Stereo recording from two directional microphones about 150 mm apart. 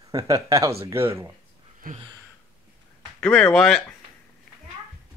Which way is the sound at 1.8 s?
75° right (ahead or behind).